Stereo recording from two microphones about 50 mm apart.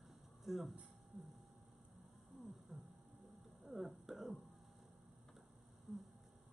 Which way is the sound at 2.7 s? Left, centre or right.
Centre.